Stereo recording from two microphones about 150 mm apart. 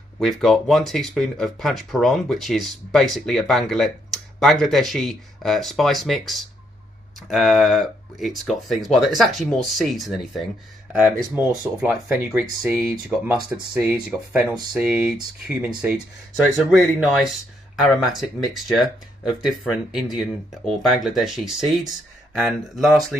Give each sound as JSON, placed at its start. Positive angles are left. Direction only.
{"t": 0.2, "sound": "speech", "side_deg": 0}
{"t": 11.3, "sound": "speech", "side_deg": -15}
{"t": 12.6, "sound": "speech", "side_deg": 0}
{"t": 17.0, "sound": "speech", "side_deg": 0}
{"t": 22.8, "sound": "speech", "side_deg": 0}